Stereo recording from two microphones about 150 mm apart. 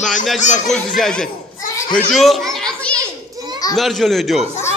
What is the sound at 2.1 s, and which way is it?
Children playing, centre (ahead or behind).